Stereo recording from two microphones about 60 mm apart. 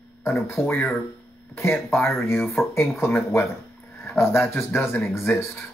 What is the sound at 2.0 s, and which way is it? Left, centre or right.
Speech, left.